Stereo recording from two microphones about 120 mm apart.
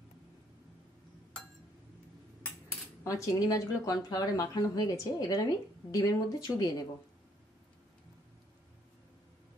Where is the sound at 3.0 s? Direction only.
25° left (ahead or behind).